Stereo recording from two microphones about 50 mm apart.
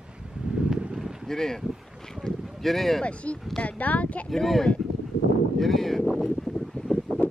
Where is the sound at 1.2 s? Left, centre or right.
Centre.